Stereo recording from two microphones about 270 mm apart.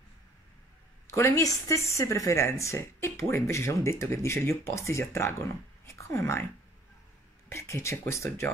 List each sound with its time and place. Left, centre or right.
1.1 s speech: centre
7.5 s speech: centre